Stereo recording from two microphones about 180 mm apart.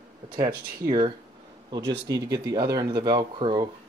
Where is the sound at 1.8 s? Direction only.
70° right (ahead or behind).